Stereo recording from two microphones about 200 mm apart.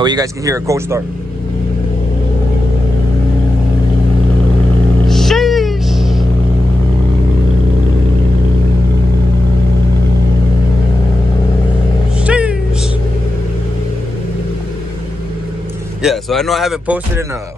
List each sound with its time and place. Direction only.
0.0 s speech: 20° right (ahead or behind)
5.0 s a sound: centre (ahead or behind)
12.3 s cat: 5° right (ahead or behind)
16.0 s speech: centre (ahead or behind)